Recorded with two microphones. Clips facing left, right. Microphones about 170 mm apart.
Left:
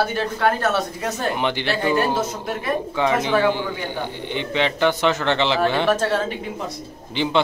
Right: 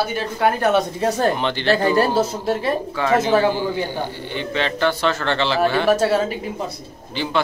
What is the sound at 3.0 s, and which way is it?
Speech, 20° left (ahead or behind).